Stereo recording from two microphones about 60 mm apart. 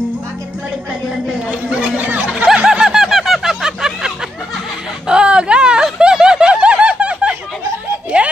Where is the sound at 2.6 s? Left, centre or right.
Centre.